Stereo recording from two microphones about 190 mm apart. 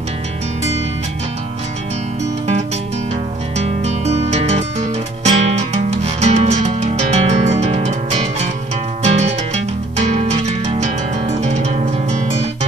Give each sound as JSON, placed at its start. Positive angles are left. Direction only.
{"t": 3.5, "sound": "music", "side_deg": -35}